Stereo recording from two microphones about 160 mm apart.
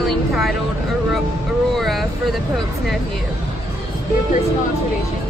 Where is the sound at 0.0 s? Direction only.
Centre (ahead or behind).